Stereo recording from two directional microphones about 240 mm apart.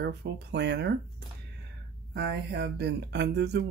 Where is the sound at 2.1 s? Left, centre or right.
Right.